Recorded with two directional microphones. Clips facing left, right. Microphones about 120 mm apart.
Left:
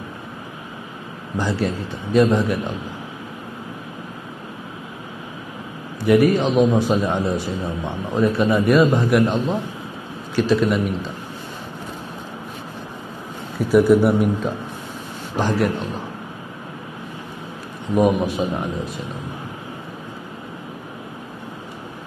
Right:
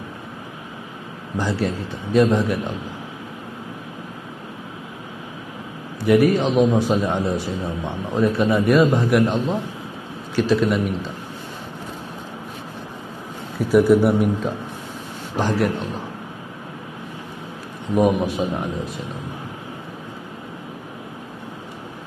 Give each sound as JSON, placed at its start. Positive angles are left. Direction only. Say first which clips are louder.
{"t": 1.3, "sound": "a man's voice", "louder": "left 1 dB", "side_deg": 25}
{"t": 6.0, "sound": "a man's voice", "louder": "left 1 dB", "side_deg": 25}
{"t": 13.7, "sound": "a man's voice", "louder": "left 1 dB", "side_deg": 25}
{"t": 17.9, "sound": "speech", "louder": "left 1 dB", "side_deg": 35}